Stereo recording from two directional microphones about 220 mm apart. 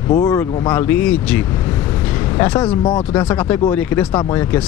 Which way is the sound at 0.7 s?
10° left (ahead or behind).